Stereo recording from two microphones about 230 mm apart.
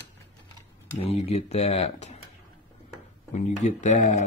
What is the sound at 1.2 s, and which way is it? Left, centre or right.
Speech, left.